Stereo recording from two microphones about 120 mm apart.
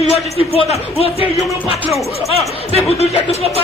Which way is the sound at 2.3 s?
60° left (ahead or behind).